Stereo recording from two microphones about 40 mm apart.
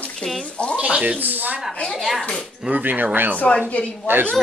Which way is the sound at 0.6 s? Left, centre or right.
Left.